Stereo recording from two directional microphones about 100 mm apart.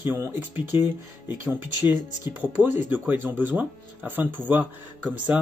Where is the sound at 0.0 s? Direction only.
20° right (ahead or behind).